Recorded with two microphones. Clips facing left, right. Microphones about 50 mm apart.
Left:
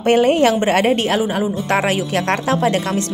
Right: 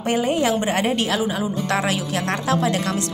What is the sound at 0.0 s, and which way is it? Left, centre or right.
A woman's voice, left.